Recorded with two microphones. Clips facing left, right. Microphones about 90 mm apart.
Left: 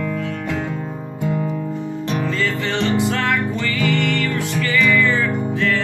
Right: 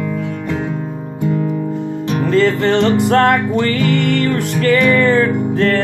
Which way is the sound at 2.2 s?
55° right (ahead or behind).